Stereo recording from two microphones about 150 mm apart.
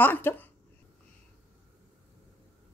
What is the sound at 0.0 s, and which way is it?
Speech, 15° left (ahead or behind).